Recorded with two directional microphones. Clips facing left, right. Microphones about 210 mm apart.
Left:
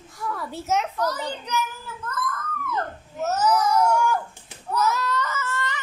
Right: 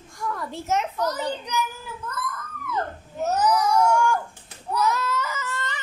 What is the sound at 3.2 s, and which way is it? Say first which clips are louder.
Babbling: even; 15° right (ahead or behind).